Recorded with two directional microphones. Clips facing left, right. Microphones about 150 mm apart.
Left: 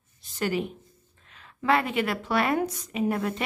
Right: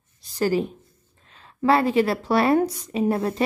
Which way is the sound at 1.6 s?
35° right (ahead or behind).